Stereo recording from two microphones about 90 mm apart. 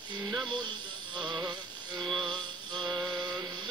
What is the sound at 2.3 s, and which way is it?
Music, 60° right (ahead or behind).